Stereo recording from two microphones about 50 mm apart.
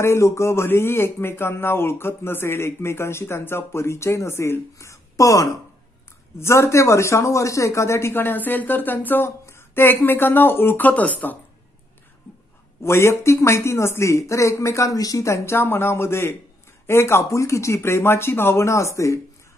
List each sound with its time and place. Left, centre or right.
0.0 s speech: left
0.7 s a woman's voice: left
6.3 s speech: left
8.1 s speech: left
10.9 s speech: left
12.8 s speech: left
15.5 s speech: left